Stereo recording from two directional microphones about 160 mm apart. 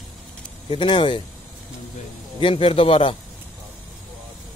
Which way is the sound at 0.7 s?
30° left (ahead or behind).